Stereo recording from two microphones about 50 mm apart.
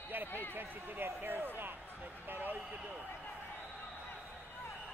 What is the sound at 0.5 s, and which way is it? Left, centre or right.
Speech, right.